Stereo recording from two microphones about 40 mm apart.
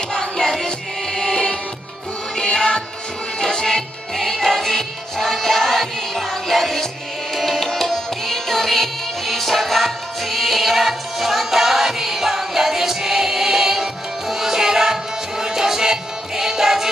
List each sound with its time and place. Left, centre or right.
0.1 s music: centre